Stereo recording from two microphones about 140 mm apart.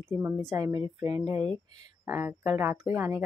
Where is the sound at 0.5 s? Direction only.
25° right (ahead or behind).